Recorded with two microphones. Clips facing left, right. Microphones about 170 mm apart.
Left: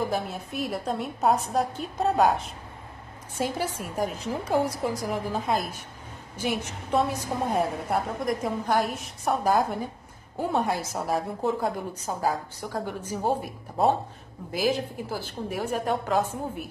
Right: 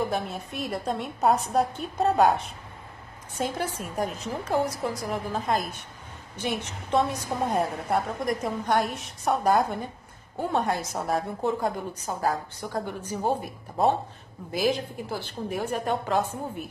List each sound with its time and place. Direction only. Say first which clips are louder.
0.1 s a woman's voice: left 1 dB; centre (ahead or behind)
14.5 s a woman's voice: even; 5° left (ahead or behind)